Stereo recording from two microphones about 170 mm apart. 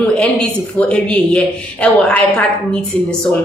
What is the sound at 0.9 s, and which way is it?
Speech, 5° left (ahead or behind).